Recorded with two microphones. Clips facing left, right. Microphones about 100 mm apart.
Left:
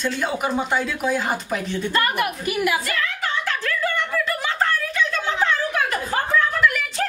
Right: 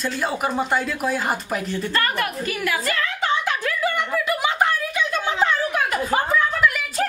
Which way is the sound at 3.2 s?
15° right (ahead or behind).